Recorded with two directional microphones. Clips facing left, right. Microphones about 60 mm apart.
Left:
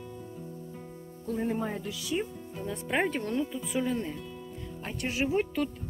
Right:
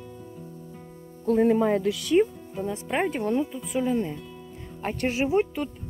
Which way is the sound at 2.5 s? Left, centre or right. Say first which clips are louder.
Right 2 dB; centre.